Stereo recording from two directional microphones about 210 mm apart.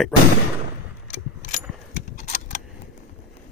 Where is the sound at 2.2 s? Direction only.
35° left (ahead or behind).